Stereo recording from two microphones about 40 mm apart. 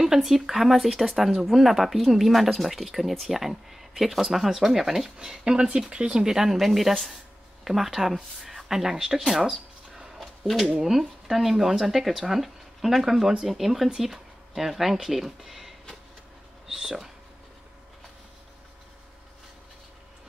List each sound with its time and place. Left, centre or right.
0.0 s speech: centre
5.4 s speech: right